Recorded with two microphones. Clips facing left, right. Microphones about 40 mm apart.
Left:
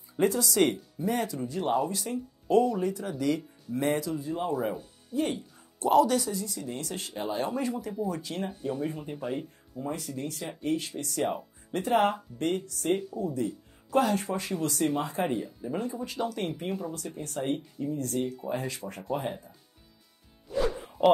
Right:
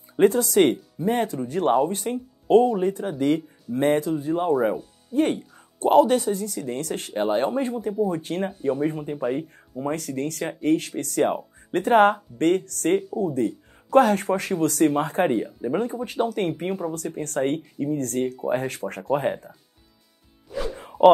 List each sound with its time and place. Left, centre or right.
0.2 s speech: right
1.5 s speech: right
1.8 s speech: right
6.4 s speech: right
8.7 s speech: right
9.1 s speech: centre
9.8 s speech: right
15.3 s speech: right
16.1 s speech: right
17.2 s speech: right